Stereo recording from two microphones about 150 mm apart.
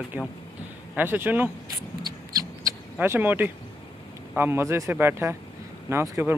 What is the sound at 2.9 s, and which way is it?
Speech, 15° right (ahead or behind).